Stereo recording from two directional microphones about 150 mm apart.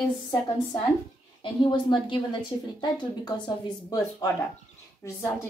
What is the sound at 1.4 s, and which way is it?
A woman's voice, 30° left (ahead or behind).